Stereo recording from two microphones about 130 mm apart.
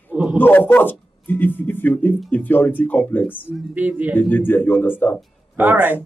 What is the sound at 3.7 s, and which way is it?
Speech, 10° right (ahead or behind).